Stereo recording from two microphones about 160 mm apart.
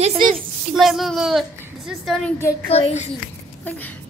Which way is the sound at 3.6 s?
10° left (ahead or behind).